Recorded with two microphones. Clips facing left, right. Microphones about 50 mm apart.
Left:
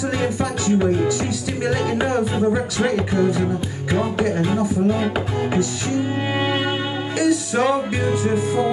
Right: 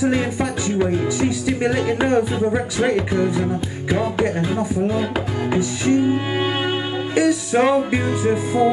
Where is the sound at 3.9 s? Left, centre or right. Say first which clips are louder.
Right 1 dB; centre.